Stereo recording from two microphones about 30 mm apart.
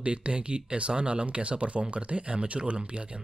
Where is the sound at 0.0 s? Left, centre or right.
Right.